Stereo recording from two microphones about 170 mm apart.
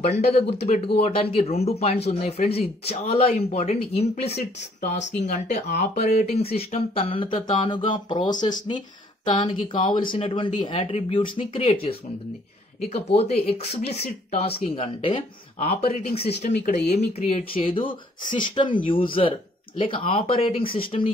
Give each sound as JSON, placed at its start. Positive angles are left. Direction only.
{"t": 0.0, "sound": "speech", "side_deg": 40}